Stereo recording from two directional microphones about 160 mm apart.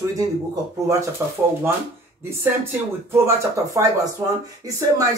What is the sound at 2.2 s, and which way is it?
Speech, 15° right (ahead or behind).